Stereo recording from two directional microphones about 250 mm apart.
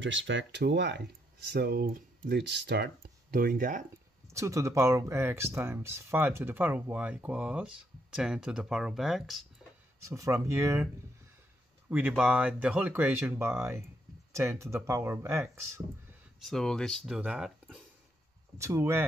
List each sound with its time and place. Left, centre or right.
0.0 s speech: right
4.3 s speech: centre
10.0 s speech: centre
11.9 s speech: centre
16.1 s speech: centre